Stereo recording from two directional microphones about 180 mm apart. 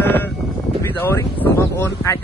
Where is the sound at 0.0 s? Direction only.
10° left (ahead or behind).